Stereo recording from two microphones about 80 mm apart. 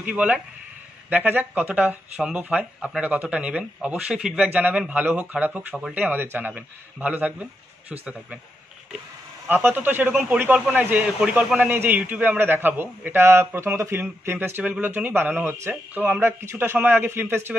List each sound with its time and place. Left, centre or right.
0.1 s a man's voice: centre
9.5 s a man's voice: right
16.2 s a man's voice: right